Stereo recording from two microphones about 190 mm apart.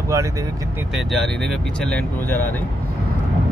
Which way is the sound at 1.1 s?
Centre (ahead or behind).